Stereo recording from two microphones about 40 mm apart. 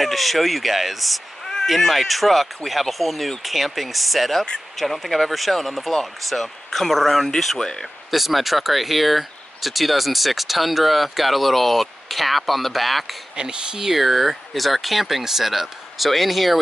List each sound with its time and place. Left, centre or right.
0.0 s speech: centre
13.4 s speech: centre
13.9 s speech: centre